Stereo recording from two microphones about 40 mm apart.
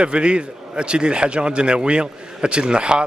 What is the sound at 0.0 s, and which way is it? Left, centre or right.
A man's voice, right.